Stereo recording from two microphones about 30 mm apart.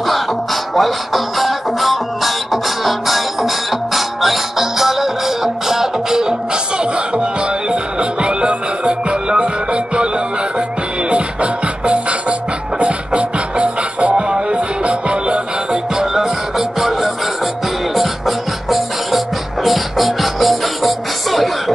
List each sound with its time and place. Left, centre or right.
0.7 s music: centre; by 16.1 s right
16.1 s music: centre